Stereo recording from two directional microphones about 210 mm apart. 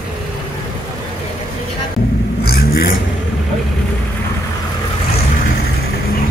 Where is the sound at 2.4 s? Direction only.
45° left (ahead or behind).